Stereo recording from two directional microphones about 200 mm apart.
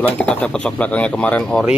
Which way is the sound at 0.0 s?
5° left (ahead or behind).